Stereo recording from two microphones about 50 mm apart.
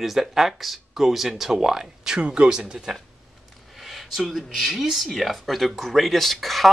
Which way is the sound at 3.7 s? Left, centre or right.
Centre.